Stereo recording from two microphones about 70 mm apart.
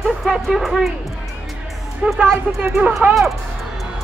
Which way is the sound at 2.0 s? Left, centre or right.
Centre.